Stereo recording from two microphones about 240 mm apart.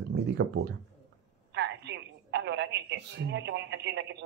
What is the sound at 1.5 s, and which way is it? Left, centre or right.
Telephone, right.